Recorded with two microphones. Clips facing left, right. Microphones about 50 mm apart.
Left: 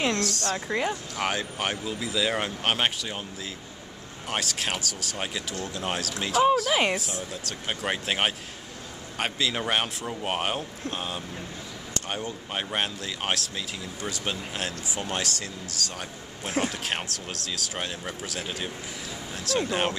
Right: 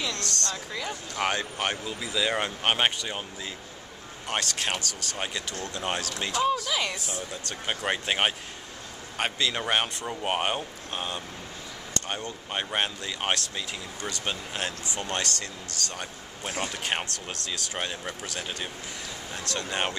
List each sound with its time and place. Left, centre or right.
0.2 s speech: centre
4.3 s speech: centre
6.7 s speech: left
7.0 s speech: centre